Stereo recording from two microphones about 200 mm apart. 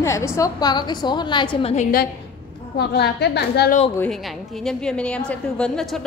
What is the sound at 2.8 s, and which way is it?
Speech, 55° left (ahead or behind).